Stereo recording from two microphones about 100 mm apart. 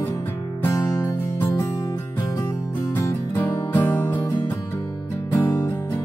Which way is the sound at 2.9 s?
25° left (ahead or behind).